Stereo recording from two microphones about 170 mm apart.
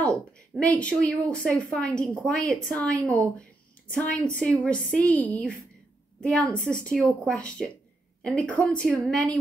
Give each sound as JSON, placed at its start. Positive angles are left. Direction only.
{"t": 0.0, "sound": "a woman's voice", "side_deg": 5}
{"t": 6.2, "sound": "a woman's voice", "side_deg": 5}